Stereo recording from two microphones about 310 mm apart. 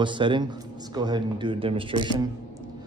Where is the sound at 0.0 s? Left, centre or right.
Centre.